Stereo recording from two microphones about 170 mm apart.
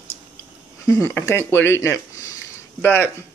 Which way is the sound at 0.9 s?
15° left (ahead or behind).